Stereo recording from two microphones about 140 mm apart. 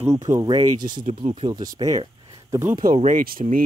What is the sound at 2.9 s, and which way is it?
Speech, 55° right (ahead or behind).